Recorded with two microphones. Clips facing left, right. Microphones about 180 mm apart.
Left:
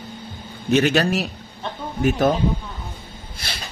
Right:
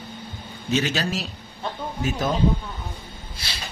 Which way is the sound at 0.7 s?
60° left (ahead or behind).